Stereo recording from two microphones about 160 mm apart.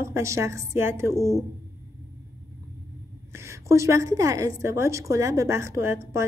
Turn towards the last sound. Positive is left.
turn(degrees=-15)  # may be behind; listen again after turning